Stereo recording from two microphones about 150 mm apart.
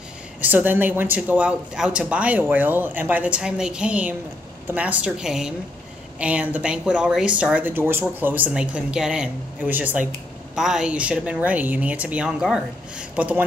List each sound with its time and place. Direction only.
0.4 s speech: 10° right (ahead or behind)